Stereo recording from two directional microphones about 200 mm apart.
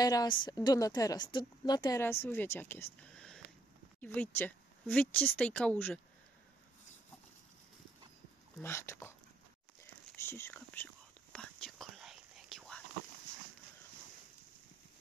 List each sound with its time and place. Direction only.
0.0 s a woman's voice: 20° left (ahead or behind)
8.5 s a woman's voice: 15° left (ahead or behind)
10.2 s speech: 10° left (ahead or behind)
11.3 s whispering: centre (ahead or behind)